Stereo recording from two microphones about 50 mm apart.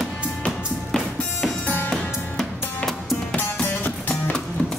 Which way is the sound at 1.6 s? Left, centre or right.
Left.